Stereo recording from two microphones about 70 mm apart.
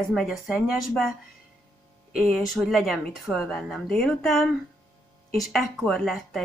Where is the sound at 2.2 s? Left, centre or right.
Centre.